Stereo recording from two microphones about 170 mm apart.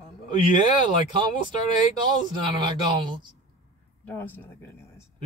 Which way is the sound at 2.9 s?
25° right (ahead or behind).